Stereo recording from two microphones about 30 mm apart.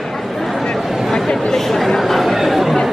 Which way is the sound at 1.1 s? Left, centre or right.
Left.